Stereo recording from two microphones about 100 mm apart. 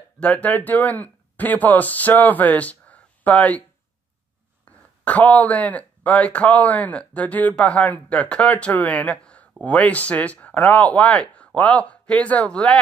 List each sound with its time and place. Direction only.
0.2 s speech: 15° left (ahead or behind)
4.6 s speech: 15° left (ahead or behind)